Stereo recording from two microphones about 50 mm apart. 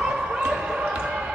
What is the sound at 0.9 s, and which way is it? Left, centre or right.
Basketball bounce, right.